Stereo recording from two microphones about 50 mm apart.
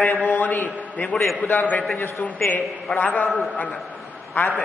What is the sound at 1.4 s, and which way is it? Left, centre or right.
Speech, left.